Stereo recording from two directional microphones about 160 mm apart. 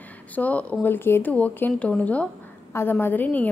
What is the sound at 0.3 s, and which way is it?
A woman's voice, 10° left (ahead or behind).